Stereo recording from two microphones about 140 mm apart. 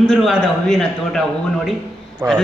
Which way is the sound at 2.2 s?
20° right (ahead or behind).